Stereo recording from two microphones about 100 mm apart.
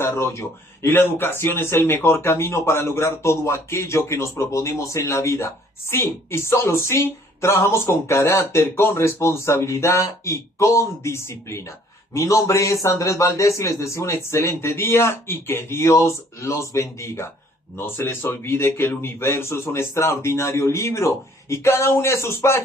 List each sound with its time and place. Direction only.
0.0 s speech: 25° left (ahead or behind)